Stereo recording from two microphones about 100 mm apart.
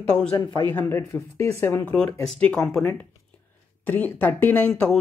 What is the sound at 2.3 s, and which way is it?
Speech, 5° left (ahead or behind).